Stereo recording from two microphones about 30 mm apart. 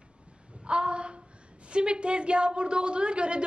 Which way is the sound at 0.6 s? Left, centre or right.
Right.